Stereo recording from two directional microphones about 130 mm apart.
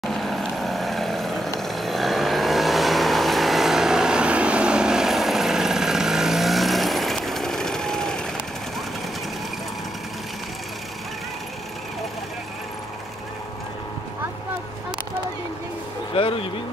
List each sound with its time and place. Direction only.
0.0 s vehicle: centre (ahead or behind)
16.2 s vehicle: 45° left (ahead or behind)